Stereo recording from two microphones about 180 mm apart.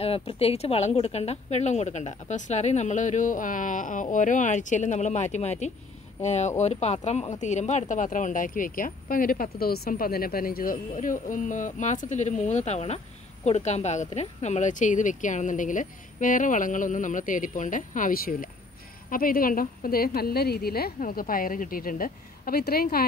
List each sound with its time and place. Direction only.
0.0 s speech: 30° left (ahead or behind); by 23.0 s 55° left (ahead or behind)